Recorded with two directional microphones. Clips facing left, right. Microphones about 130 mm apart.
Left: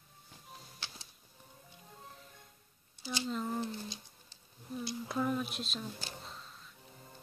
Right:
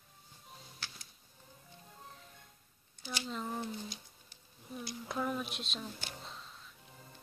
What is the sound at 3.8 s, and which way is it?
Music, 30° left (ahead or behind).